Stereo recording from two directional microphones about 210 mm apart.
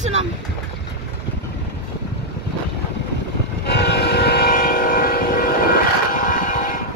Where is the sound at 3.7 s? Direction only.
50° left (ahead or behind).